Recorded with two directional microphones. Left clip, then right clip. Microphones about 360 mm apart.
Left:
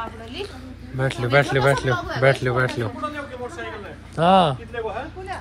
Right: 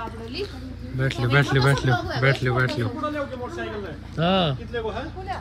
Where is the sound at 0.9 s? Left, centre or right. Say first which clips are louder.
Left 4 dB; centre.